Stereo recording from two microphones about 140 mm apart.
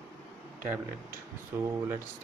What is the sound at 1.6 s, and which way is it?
Speech, 20° right (ahead or behind).